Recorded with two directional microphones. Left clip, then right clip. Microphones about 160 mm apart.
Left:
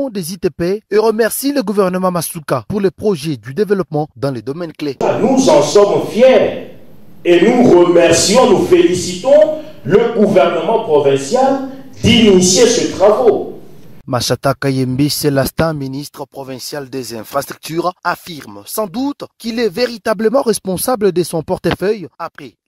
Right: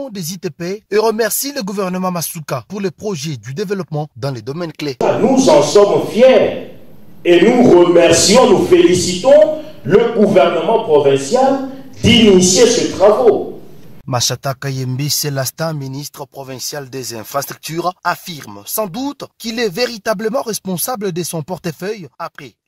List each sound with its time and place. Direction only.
0.0 s speech: 45° left (ahead or behind)
4.9 s a man's voice: centre (ahead or behind)
14.1 s speech: 45° left (ahead or behind)